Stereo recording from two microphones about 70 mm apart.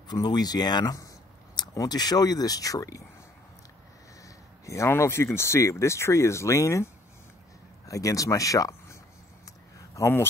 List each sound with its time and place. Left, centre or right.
0.1 s speech: left
1.7 s speech: left
4.6 s speech: left
9.9 s speech: left